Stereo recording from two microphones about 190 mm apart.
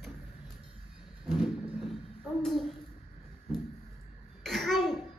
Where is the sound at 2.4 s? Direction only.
Centre (ahead or behind).